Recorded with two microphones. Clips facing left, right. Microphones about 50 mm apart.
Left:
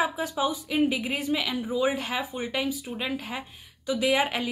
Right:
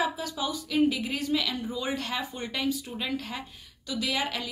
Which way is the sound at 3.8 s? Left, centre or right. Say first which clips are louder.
Left 6 dB; left.